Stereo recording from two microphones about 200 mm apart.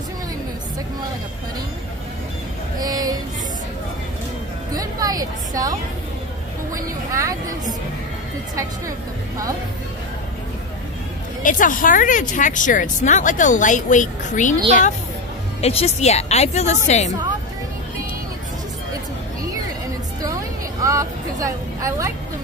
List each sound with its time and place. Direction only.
2.8 s music: 20° right (ahead or behind)
4.7 s a woman's voice: 20° right (ahead or behind)
11.4 s speech: 40° left (ahead or behind)
15.6 s speech: 30° left (ahead or behind)
20.8 s vehicle: 15° right (ahead or behind)